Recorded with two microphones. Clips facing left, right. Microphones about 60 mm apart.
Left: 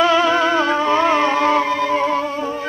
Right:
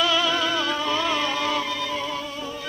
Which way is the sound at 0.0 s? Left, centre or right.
Left.